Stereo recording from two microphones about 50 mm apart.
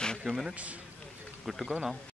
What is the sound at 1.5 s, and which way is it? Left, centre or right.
Speech, centre.